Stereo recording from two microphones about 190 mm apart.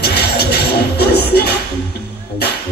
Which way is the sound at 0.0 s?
60° left (ahead or behind).